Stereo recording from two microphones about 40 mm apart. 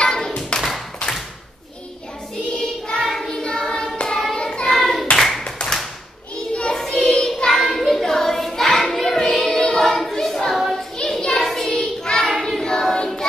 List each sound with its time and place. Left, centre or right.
0.5 s clapping: left
2.5 s child singing: centre
3.3 s singing: centre
3.7 s hands: left
4.4 s child singing: left
4.7 s clapping: centre
5.6 s tap: left
6.7 s child singing: centre
7.6 s child singing: centre
11.0 s a sound: left
11.4 s child singing: centre